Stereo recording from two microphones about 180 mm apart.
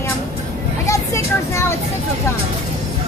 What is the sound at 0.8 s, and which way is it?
Vehicle, 15° left (ahead or behind).